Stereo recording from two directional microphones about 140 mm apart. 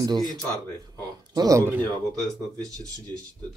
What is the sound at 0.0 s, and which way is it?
A man's voice, 30° right (ahead or behind).